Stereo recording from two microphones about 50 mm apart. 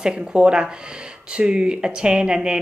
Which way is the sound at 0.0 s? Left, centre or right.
Centre.